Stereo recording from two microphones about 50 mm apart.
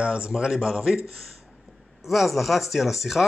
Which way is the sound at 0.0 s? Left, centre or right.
Centre.